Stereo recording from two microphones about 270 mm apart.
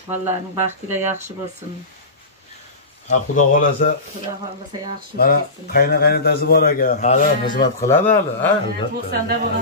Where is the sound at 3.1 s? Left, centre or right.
Left.